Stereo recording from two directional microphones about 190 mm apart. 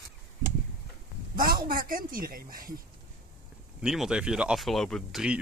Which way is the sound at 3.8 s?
5° right (ahead or behind).